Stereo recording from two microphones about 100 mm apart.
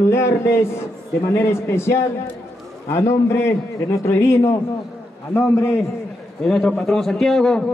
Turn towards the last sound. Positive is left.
turn(degrees=5)  # may be behind; listen again after turning